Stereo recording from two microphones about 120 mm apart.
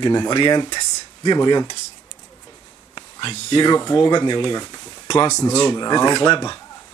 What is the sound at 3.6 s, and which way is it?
Speech, 35° left (ahead or behind).